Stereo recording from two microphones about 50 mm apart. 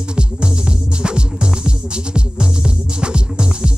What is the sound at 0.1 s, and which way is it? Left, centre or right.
Music, centre.